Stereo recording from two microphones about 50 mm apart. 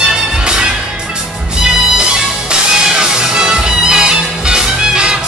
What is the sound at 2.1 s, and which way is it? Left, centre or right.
Music, centre.